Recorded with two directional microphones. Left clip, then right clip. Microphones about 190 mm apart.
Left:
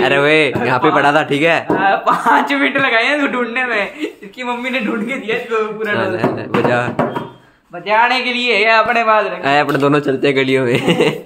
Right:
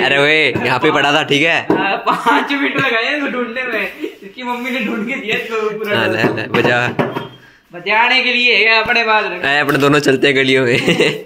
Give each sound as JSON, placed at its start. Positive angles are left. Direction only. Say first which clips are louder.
{"t": 0.0, "sound": "speech", "louder": "even", "side_deg": 10}
{"t": 1.8, "sound": "a man's voice", "louder": "left 2 dB", "side_deg": 20}
{"t": 5.9, "sound": "speech", "louder": "right 3 dB", "side_deg": -10}
{"t": 7.9, "sound": "speech", "louder": "right 1 dB", "side_deg": 5}
{"t": 9.4, "sound": "a man's voice", "louder": "even", "side_deg": -5}
{"t": 10.3, "sound": "speech", "louder": "right 2 dB", "side_deg": 0}